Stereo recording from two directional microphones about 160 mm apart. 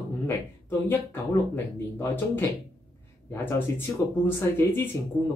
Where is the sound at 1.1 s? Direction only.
15° left (ahead or behind).